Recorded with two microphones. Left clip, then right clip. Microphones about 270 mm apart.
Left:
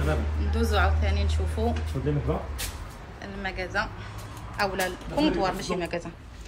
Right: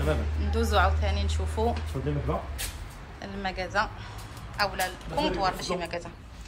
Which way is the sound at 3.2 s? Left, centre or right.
Centre.